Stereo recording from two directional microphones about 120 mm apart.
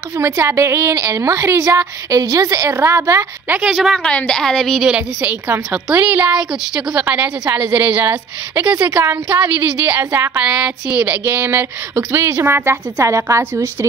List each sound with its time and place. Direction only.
0.2 s a woman's voice: 20° right (ahead or behind)
3.5 s a woman's voice: 5° right (ahead or behind)
4.8 s a woman's voice: 10° right (ahead or behind)